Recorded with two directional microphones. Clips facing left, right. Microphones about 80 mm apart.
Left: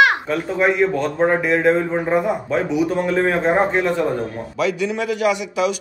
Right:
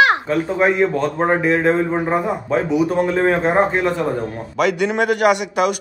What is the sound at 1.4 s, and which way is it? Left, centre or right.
Speech, right.